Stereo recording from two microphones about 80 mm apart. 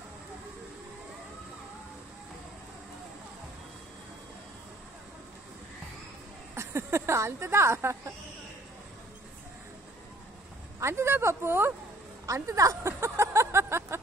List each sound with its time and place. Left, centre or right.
6.5 s speech: right
10.8 s speech: right
12.3 s a sound: right